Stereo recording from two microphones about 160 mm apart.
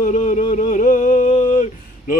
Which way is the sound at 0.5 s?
50° left (ahead or behind).